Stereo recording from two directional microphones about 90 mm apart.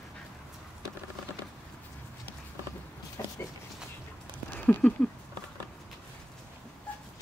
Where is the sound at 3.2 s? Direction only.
35° left (ahead or behind).